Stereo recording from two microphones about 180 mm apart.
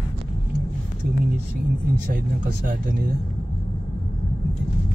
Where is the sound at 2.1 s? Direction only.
50° right (ahead or behind).